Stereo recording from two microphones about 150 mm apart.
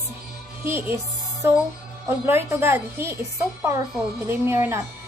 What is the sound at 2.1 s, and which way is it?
A woman's voice, 15° right (ahead or behind).